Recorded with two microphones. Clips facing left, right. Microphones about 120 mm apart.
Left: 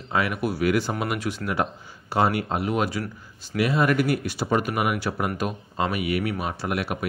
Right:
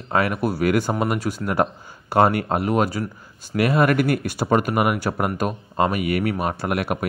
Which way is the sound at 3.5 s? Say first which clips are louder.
Right 3 dB; 55° right (ahead or behind).